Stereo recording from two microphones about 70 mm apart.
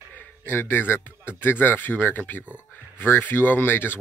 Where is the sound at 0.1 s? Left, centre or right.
Left.